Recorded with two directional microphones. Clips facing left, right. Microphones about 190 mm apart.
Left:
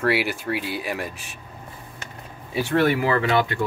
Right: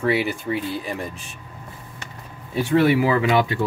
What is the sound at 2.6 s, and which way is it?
Speech, centre (ahead or behind).